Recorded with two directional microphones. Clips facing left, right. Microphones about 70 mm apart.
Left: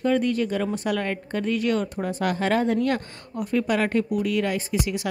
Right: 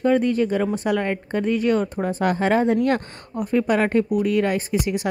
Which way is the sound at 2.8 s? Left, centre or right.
Right.